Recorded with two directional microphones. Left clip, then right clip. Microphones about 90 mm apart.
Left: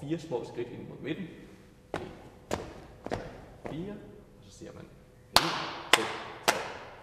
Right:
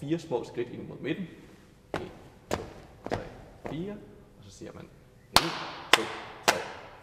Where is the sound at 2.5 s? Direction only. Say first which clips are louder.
Right 2 dB; 30° left (ahead or behind).